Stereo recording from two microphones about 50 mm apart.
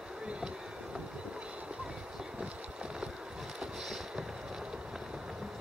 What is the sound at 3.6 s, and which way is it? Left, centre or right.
Boat, centre.